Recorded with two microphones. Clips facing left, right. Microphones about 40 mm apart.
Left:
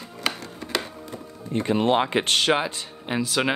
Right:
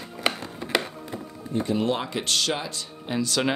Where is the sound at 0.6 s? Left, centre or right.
Right.